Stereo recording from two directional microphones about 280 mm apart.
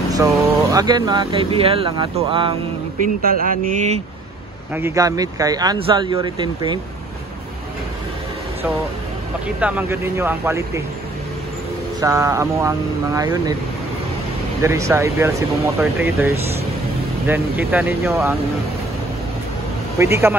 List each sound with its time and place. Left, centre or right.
0.1 s speech: centre
3.2 s speech: right
4.7 s speech: centre
9.6 s speech: centre
12.0 s speech: centre
14.6 s speech: centre
20.0 s speech: centre